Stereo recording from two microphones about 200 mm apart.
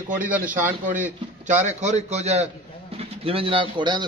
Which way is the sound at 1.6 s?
35° right (ahead or behind).